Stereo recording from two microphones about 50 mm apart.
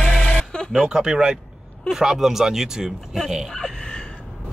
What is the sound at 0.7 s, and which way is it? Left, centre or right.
Speech, centre.